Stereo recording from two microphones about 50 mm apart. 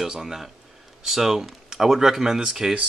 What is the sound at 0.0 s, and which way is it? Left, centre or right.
Speech, centre.